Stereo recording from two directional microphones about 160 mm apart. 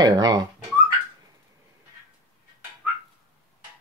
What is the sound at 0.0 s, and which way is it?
Dog, 25° right (ahead or behind).